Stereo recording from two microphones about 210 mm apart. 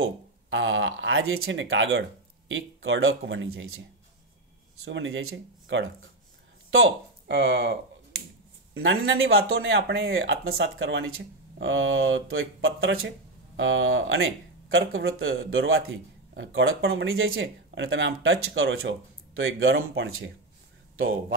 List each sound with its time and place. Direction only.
0.0 s speech: 65° right (ahead or behind); by 3.8 s 85° right
4.8 s speech: 60° right (ahead or behind)
7.2 s speech: 60° right (ahead or behind)